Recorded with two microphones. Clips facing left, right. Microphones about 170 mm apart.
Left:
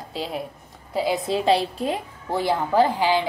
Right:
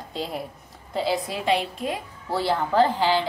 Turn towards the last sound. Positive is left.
turn(degrees=15)  # may be behind; listen again after turning